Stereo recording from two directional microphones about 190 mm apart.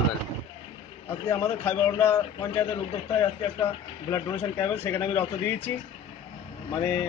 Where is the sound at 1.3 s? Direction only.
10° left (ahead or behind).